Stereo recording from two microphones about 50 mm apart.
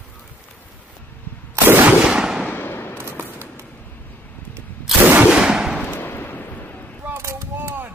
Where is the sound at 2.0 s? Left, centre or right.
Centre.